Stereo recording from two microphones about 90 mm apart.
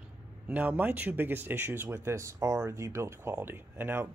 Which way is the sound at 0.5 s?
15° right (ahead or behind).